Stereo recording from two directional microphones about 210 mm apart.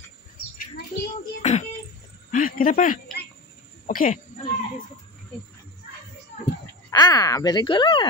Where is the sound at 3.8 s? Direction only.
40° left (ahead or behind).